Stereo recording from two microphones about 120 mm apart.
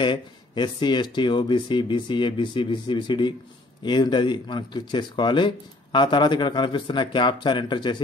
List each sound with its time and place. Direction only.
0.0 s speech: 40° left (ahead or behind)